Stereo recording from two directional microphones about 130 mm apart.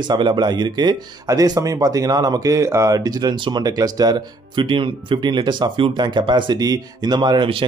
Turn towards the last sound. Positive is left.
turn(degrees=-40)  # may be behind; listen again after turning